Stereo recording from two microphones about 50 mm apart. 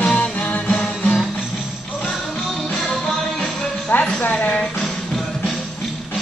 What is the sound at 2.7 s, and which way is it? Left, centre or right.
Music, centre.